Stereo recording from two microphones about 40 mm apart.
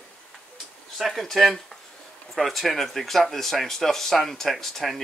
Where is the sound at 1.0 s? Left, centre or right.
Centre.